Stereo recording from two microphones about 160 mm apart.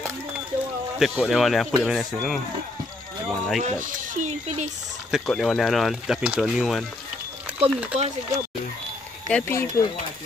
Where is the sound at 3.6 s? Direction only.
50° right (ahead or behind).